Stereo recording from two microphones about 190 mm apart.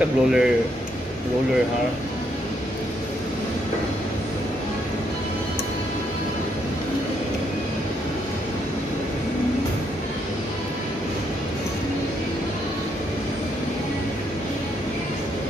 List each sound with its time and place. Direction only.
0.0 s speech: 5° right (ahead or behind)